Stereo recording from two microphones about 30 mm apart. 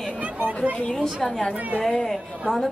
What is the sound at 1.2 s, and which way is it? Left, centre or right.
A man's voice, centre.